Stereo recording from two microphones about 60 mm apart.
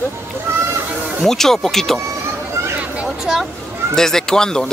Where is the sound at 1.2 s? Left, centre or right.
Centre.